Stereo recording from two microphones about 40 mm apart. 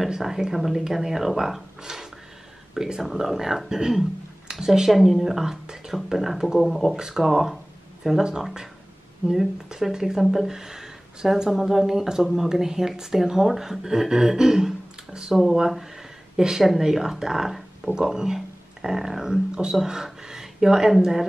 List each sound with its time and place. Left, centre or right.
0.1 s speech: centre
9.3 s speech: centre
19.7 s a sound: centre
21.0 s speech: centre